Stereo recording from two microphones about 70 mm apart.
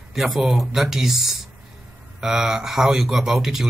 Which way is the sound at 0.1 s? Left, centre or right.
Centre.